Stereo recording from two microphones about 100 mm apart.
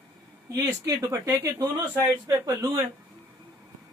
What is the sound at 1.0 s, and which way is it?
Speech, 35° right (ahead or behind).